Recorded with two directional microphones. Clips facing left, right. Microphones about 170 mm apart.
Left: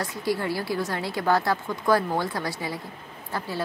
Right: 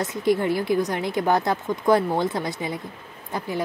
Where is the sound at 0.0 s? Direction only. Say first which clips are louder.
Right 5 dB; 20° right (ahead or behind).